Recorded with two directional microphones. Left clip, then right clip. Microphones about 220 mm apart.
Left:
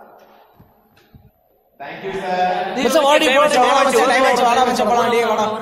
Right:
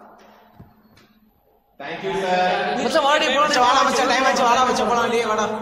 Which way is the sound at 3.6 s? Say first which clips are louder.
Left 3 dB; 25° left (ahead or behind).